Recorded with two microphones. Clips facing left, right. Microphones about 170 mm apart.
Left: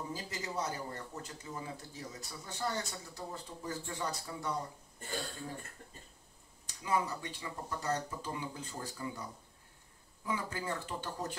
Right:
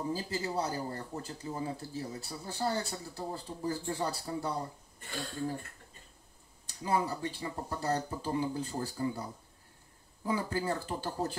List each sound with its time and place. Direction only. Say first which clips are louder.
0.1 s speech: right 6 dB; 30° right (ahead or behind)
6.8 s speech: right 3 dB; 35° right (ahead or behind)